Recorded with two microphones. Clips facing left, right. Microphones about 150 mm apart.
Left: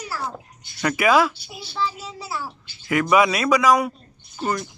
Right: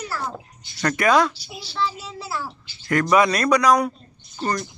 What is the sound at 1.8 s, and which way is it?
Speech, 10° left (ahead or behind).